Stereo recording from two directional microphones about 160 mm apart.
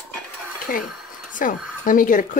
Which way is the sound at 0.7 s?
60° left (ahead or behind).